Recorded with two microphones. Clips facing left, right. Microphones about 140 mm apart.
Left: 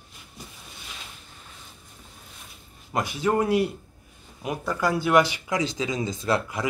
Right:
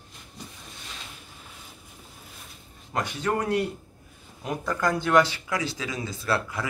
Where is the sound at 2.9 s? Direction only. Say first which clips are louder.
Left 3 dB; 10° left (ahead or behind).